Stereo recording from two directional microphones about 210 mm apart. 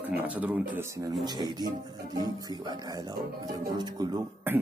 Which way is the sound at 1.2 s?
20° right (ahead or behind).